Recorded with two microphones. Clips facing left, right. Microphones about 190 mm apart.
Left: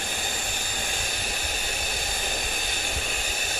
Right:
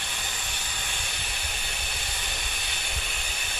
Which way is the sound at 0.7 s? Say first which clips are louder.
Left 5 dB; 40° left (ahead or behind).